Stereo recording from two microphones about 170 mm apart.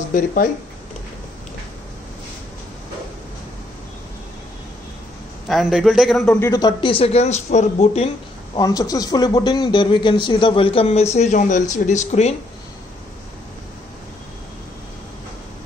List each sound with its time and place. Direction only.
0.1 s speech: 55° left (ahead or behind)
5.5 s a man's voice: centre (ahead or behind)
6.4 s speech: 20° left (ahead or behind); by 8.1 s 40° left (ahead or behind)
8.5 s a man's voice: 20° left (ahead or behind)
11.1 s speech: 45° left (ahead or behind)